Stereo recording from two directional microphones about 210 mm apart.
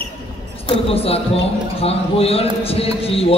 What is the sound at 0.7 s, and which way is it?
A man's voice, 30° left (ahead or behind).